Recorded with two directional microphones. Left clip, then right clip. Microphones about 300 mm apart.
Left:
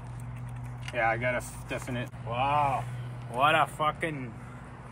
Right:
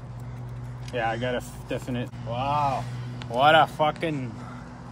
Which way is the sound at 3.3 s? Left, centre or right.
Right.